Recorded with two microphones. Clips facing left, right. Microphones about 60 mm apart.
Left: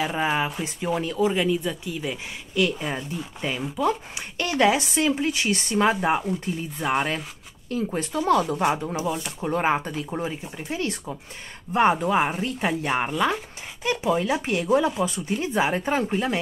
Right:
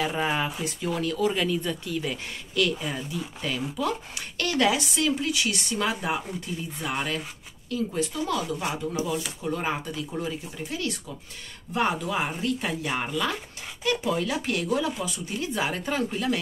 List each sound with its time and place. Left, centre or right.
0.0 s speech: centre; by 16.3 s left